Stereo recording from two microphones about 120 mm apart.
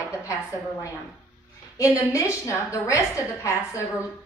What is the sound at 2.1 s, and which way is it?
A woman's voice, 25° left (ahead or behind).